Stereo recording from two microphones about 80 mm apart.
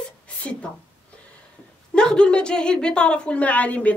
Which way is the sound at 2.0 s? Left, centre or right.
Centre.